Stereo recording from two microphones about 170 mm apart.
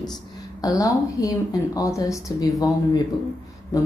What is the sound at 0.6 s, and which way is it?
Speech, 20° left (ahead or behind).